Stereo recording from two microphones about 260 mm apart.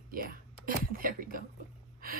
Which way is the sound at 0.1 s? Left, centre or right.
Right.